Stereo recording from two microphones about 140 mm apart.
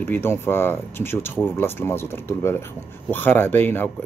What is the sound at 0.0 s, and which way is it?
Speech, 15° left (ahead or behind).